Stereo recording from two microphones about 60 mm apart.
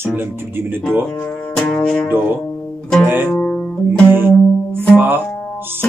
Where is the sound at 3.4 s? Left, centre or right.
Left.